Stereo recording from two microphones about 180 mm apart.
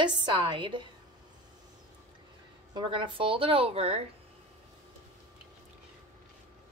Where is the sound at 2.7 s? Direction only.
30° right (ahead or behind).